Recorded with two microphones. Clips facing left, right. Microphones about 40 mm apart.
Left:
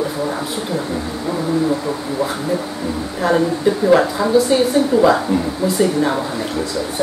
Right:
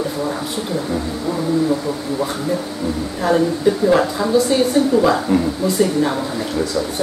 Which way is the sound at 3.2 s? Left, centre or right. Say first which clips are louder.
Left 1 dB; centre.